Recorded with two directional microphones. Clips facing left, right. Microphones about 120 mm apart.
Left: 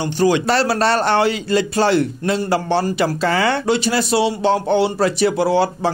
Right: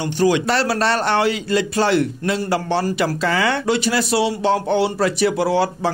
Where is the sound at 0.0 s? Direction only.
35° left (ahead or behind).